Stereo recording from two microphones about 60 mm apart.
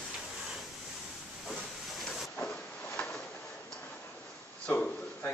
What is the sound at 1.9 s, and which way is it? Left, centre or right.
Vehicle, centre.